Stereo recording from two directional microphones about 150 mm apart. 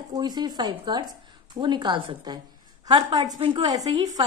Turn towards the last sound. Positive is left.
turn(degrees=-25)  # may be behind; listen again after turning